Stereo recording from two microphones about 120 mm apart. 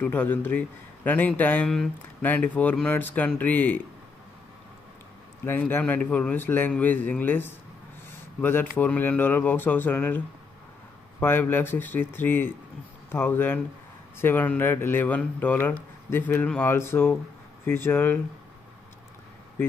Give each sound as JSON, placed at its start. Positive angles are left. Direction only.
{"t": 0.0, "sound": "speech", "side_deg": 15}
{"t": 5.4, "sound": "speech", "side_deg": 20}